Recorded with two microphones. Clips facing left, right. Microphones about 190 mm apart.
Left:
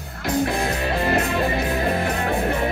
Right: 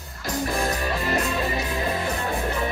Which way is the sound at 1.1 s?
60° left (ahead or behind).